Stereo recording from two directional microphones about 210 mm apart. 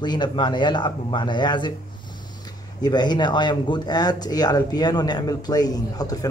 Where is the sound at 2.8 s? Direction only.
20° left (ahead or behind).